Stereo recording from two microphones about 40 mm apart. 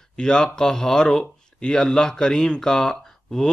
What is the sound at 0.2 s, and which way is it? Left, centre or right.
A man's voice, centre.